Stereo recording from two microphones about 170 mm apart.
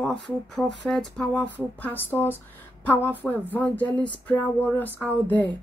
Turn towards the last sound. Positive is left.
turn(degrees=10)  # may be behind; listen again after turning